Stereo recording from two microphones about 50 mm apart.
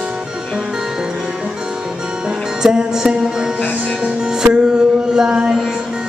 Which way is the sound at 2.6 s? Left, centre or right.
Centre.